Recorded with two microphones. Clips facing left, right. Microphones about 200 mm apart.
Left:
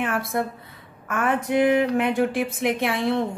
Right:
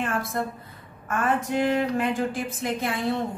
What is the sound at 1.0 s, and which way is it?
A woman's voice, 60° left (ahead or behind).